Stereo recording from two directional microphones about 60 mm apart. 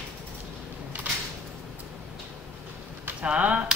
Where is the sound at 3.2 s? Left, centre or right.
Right.